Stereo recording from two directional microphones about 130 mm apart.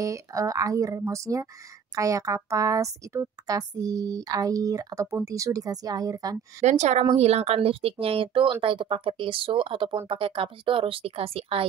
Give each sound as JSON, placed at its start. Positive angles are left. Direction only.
{"t": 0.0, "sound": "a woman's voice", "side_deg": -25}
{"t": 6.6, "sound": "speech", "side_deg": -60}